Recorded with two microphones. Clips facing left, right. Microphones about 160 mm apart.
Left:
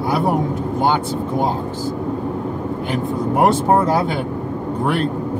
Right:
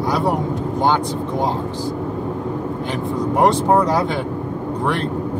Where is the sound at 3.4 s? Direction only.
5° left (ahead or behind).